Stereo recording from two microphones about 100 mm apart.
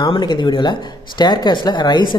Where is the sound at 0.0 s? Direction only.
50° left (ahead or behind).